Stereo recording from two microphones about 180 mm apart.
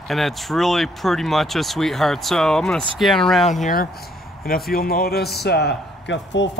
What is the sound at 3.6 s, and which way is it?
Speech, 55° left (ahead or behind).